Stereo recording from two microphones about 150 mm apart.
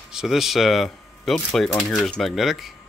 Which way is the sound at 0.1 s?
5° right (ahead or behind).